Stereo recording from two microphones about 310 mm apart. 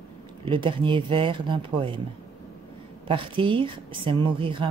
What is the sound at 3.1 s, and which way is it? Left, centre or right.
Speech, centre.